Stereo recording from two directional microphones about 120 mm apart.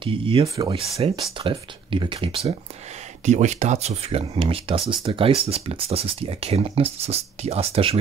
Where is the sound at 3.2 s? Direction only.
75° right (ahead or behind).